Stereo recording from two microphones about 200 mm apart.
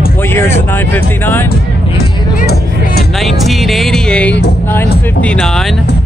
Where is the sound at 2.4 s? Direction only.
50° left (ahead or behind).